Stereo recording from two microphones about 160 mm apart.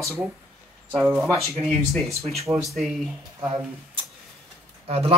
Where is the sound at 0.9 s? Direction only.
15° right (ahead or behind).